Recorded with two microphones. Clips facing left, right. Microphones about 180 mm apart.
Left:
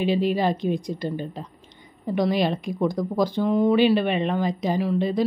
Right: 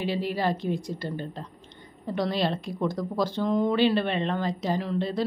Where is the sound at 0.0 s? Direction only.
20° left (ahead or behind).